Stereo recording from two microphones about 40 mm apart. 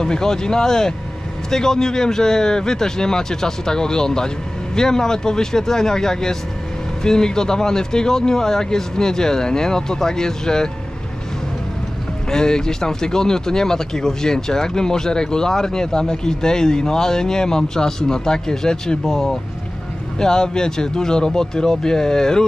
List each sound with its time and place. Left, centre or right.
0.0 s speech: centre
12.3 s speech: centre